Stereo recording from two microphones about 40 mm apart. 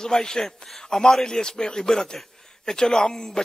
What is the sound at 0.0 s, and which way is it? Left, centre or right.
A man's voice, centre.